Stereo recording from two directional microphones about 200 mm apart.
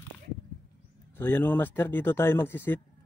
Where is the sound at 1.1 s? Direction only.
10° left (ahead or behind).